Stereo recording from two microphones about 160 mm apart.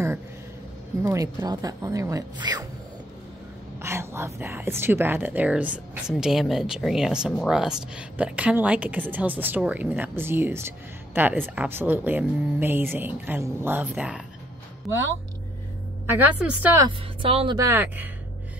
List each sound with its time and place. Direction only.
1.0 s speech: 20° right (ahead or behind)
3.8 s speech: 15° right (ahead or behind)
16.1 s speech: 10° right (ahead or behind)
17.2 s speech: 35° right (ahead or behind)
17.6 s speech: 15° right (ahead or behind)